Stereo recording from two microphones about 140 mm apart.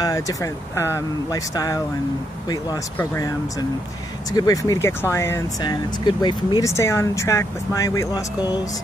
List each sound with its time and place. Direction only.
0.0 s speech: 25° left (ahead or behind)
6.7 s speech: 20° left (ahead or behind)